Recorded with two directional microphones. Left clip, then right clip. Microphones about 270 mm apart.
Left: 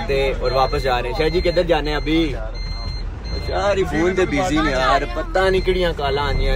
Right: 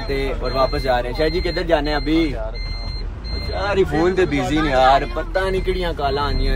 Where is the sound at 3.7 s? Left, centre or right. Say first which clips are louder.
Right 5 dB; centre.